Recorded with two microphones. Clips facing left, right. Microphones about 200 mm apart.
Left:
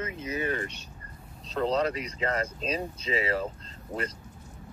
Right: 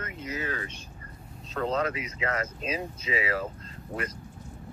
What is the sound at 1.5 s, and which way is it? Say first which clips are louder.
Speech: left 2 dB; 35° left (ahead or behind).